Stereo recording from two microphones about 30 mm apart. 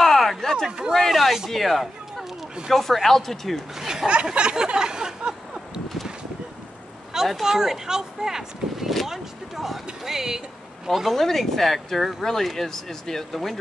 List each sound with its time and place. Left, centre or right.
0.0 s a sound: centre
0.9 s speech: centre
2.7 s speech: centre
3.8 s a sound: right
7.4 s speech: centre
11.1 s speech: centre